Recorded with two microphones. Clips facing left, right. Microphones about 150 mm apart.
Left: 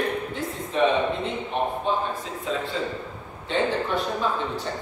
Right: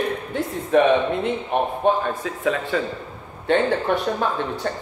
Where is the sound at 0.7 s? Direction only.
65° right (ahead or behind).